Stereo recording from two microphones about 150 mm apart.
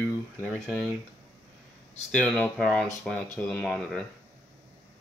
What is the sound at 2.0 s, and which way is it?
Speech, 5° left (ahead or behind).